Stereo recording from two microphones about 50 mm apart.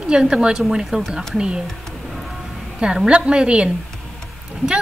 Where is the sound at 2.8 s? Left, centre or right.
Centre.